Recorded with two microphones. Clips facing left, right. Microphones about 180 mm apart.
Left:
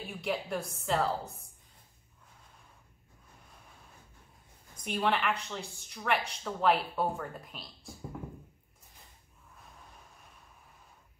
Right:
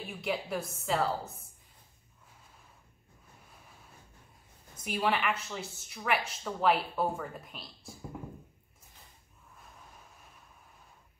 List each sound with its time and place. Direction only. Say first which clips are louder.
0.0 s speech: even; centre (ahead or behind)
4.8 s speech: even; 5° right (ahead or behind)